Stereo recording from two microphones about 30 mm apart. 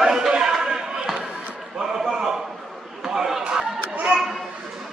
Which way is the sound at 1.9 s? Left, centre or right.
Centre.